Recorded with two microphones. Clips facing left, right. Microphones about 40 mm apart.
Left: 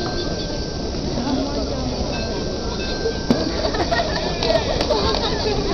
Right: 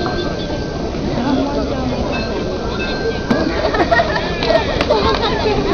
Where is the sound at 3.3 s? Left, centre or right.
Right.